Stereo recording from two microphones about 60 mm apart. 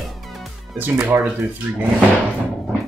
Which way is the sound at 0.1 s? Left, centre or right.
Centre.